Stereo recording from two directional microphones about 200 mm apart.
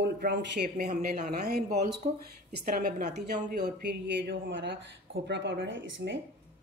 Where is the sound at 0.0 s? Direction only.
55° right (ahead or behind).